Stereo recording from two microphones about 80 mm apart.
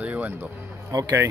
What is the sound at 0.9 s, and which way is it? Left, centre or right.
Speech, right.